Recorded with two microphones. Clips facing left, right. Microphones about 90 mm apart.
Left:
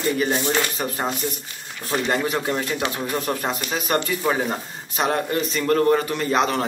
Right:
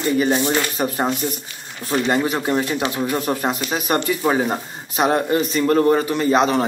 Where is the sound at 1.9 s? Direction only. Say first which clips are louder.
Right 3 dB; centre (ahead or behind).